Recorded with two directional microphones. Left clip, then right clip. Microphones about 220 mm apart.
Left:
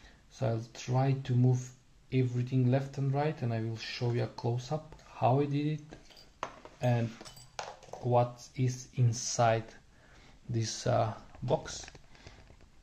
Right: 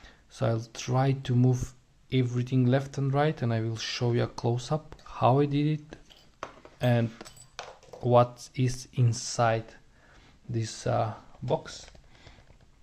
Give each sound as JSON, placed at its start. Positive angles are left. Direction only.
{"t": 0.0, "sound": "speech", "side_deg": -30}